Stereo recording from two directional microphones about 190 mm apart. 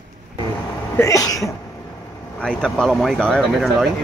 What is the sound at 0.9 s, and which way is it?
Speech, 15° left (ahead or behind).